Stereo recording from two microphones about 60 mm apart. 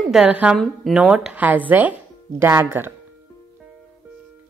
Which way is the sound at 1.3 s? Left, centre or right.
Right.